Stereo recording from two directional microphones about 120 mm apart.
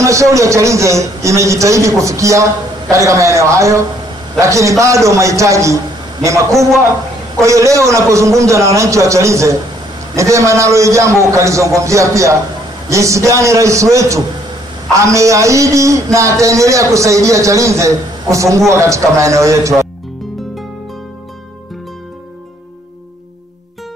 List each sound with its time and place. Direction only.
0.0 s a man's voice: 25° right (ahead or behind)